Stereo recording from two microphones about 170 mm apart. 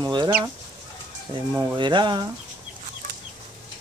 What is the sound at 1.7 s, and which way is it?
Speech, 25° right (ahead or behind).